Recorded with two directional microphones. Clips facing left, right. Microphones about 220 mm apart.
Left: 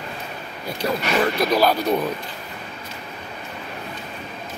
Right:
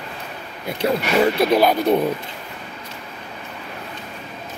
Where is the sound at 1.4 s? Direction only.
20° right (ahead or behind).